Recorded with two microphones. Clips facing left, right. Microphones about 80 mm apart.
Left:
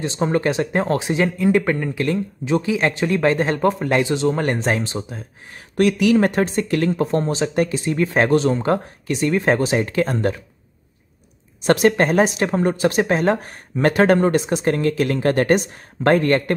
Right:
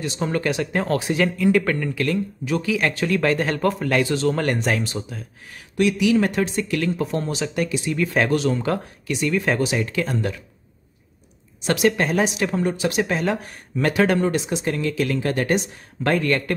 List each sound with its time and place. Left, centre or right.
0.0 s speech: left
5.8 s speech: left
11.6 s speech: left